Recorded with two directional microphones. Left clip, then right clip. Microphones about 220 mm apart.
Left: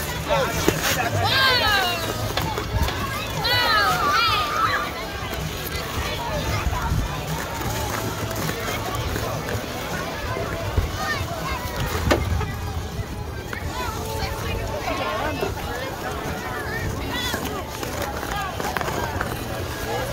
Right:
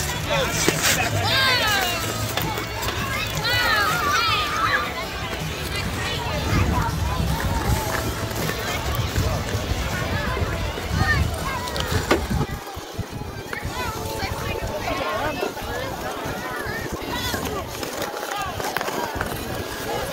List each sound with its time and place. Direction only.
0.3 s boat: 25° left (ahead or behind)
1.2 s music: 15° left (ahead or behind)
3.4 s a sound: 20° left (ahead or behind)